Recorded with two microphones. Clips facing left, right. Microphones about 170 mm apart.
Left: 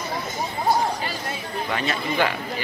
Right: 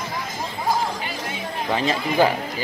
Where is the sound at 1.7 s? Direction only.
30° right (ahead or behind).